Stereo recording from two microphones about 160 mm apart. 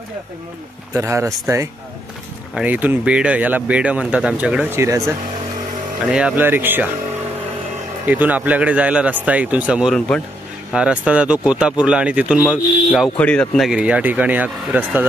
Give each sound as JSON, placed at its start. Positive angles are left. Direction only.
{"t": 0.9, "sound": "speech", "side_deg": -20}
{"t": 2.5, "sound": "speech", "side_deg": -10}
{"t": 6.0, "sound": "speech", "side_deg": -5}
{"t": 8.1, "sound": "speech", "side_deg": -10}